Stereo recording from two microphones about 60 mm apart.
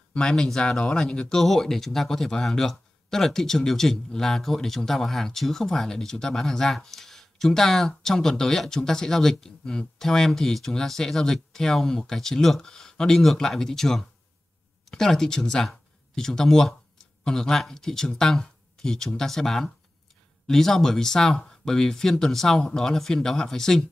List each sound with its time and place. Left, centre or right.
0.1 s speech: centre